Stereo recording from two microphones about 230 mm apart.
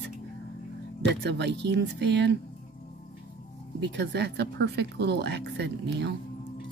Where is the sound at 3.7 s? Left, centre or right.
Right.